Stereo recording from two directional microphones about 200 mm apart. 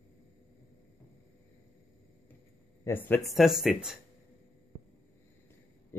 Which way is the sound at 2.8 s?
10° left (ahead or behind).